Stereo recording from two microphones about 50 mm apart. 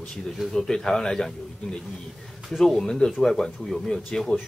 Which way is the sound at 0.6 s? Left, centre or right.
Centre.